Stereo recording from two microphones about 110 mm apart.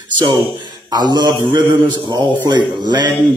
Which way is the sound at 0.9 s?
40° right (ahead or behind).